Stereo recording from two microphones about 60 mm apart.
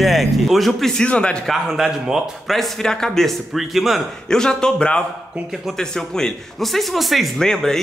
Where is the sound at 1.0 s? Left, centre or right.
Centre.